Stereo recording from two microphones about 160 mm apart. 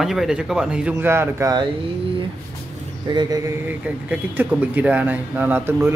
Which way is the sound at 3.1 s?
25° right (ahead or behind).